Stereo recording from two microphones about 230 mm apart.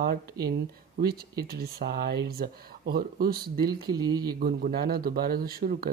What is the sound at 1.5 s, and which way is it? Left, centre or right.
Speech, right.